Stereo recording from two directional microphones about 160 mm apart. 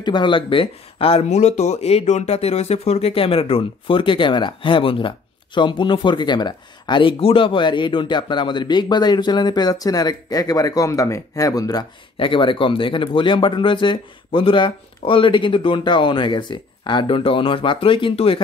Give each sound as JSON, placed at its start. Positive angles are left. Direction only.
{"t": 0.0, "sound": "speech", "side_deg": 30}